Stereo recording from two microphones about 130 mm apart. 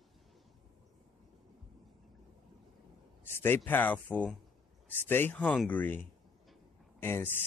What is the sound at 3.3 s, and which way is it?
Speech, 15° left (ahead or behind).